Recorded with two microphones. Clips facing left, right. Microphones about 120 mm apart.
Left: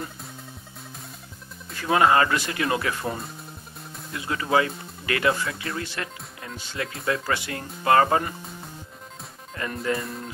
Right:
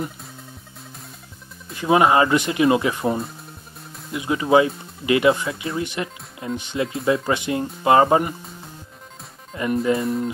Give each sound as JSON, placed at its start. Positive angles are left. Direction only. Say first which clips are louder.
{"t": 1.8, "sound": "speech", "louder": "right 3 dB", "side_deg": -20}
{"t": 9.6, "sound": "speech", "louder": "right 8 dB", "side_deg": -20}
{"t": 9.9, "sound": "speech", "louder": "right 9 dB", "side_deg": 0}